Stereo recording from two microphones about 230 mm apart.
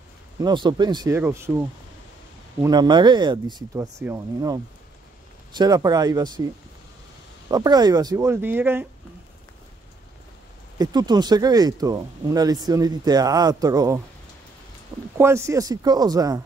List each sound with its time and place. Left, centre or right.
0.4 s speech: centre
2.6 s speech: centre
7.4 s speech: centre
10.8 s speech: centre
15.1 s speech: centre